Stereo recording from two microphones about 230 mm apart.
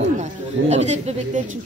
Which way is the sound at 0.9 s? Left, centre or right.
Right.